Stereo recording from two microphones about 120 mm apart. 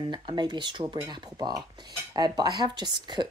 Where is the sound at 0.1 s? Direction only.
40° right (ahead or behind).